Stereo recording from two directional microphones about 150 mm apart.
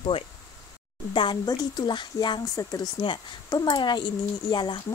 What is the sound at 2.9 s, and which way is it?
Speech, 30° left (ahead or behind).